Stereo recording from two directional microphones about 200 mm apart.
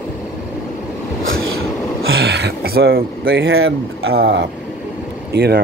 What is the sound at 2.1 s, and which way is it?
Speech, 55° right (ahead or behind).